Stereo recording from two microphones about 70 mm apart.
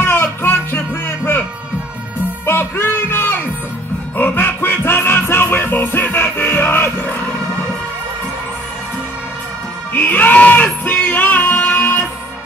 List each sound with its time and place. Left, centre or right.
0.0 s music: left
2.4 s music: left
9.9 s music: left